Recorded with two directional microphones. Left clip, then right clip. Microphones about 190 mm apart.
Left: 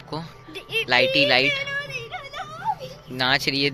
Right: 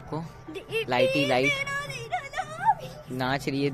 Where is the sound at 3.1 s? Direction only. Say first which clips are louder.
Left 7 dB; 10° right (ahead or behind).